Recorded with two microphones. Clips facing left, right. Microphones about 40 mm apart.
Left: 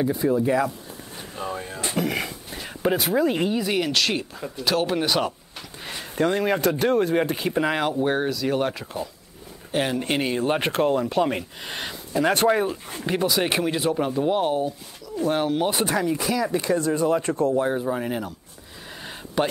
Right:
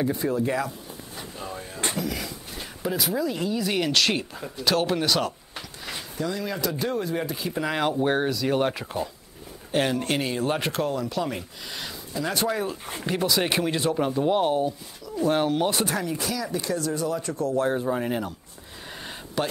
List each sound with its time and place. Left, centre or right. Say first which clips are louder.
0.0 s speech: left 3 dB; centre
1.3 s speech: left 7 dB; left
3.6 s speech: even; centre
5.0 s speech: left 1 dB; centre
6.1 s speech: left 8 dB; left
7.8 s speech: even; centre
9.7 s speech: even; centre
10.0 s speech: left 2 dB; centre
10.6 s speech: left 5 dB; left
13.0 s speech: left 2 dB; centre
15.8 s speech: left 4 dB; left
17.6 s speech: left 1 dB; centre
19.4 s speech: left 4 dB; centre